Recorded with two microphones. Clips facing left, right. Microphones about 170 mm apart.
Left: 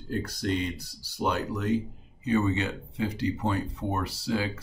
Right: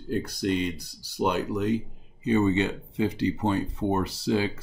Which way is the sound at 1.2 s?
15° right (ahead or behind).